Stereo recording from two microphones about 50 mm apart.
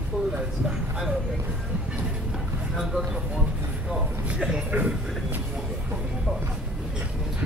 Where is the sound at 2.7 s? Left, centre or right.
Centre.